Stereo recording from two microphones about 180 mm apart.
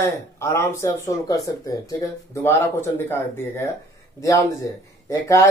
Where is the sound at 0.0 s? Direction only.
15° left (ahead or behind).